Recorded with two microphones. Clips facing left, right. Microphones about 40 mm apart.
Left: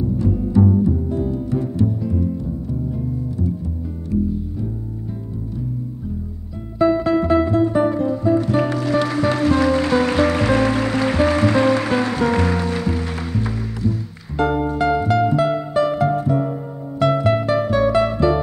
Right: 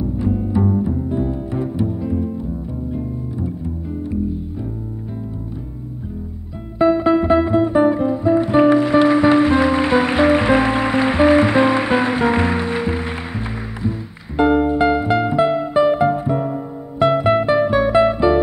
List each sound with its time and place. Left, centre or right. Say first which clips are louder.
0.2 s music: left 2 dB; right
6.8 s music: right 2 dB; right